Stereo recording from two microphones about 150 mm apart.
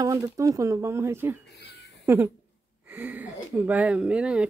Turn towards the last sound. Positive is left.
turn(degrees=-5)  # may be behind; listen again after turning